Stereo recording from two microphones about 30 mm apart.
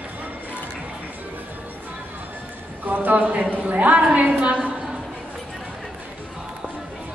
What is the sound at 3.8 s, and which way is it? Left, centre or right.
Speech, right.